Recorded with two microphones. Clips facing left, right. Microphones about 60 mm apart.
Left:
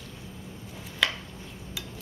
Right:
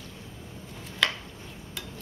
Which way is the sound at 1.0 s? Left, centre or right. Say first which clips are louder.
Even; centre.